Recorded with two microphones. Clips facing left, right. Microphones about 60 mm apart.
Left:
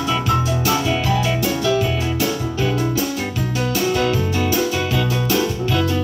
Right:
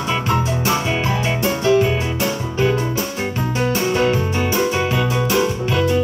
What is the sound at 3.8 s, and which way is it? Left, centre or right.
Music, right.